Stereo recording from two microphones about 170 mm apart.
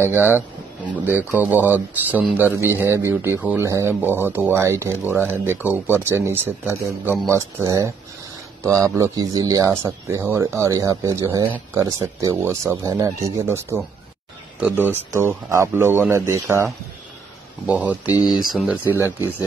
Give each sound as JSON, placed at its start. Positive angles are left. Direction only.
{"t": 0.0, "sound": "speech", "side_deg": -15}
{"t": 17.6, "sound": "speech", "side_deg": -10}
{"t": 18.1, "sound": "speech", "side_deg": 20}
{"t": 18.5, "sound": "speech", "side_deg": -5}